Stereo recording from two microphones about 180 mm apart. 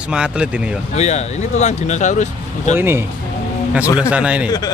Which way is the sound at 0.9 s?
40° left (ahead or behind).